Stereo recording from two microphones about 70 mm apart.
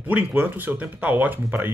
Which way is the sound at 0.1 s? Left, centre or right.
Right.